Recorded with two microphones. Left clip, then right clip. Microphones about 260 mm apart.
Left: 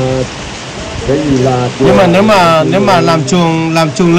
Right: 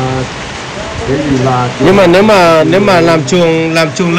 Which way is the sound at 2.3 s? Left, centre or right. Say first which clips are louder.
Right 1 dB; centre.